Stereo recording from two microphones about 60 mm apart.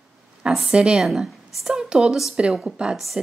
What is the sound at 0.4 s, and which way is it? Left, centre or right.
Speech, centre.